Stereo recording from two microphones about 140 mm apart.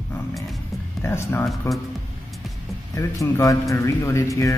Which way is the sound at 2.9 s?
25° left (ahead or behind).